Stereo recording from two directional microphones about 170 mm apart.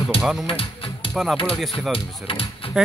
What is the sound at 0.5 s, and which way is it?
Music, 30° left (ahead or behind).